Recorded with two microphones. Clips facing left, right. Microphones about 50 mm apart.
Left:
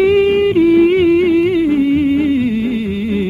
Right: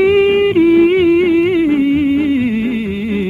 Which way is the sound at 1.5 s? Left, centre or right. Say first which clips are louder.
Right 1 dB; right.